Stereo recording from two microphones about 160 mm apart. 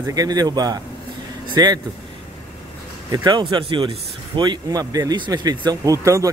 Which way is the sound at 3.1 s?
25° right (ahead or behind).